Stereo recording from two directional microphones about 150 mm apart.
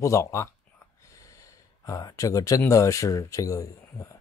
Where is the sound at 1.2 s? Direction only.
20° left (ahead or behind).